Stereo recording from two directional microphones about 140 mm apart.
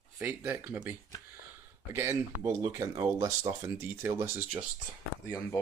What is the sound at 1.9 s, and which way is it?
Speech, 20° right (ahead or behind).